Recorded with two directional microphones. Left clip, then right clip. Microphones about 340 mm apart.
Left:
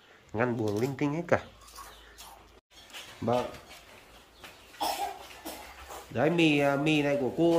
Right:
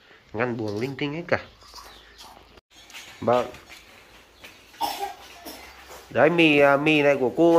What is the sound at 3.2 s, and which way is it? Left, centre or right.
Speech, centre.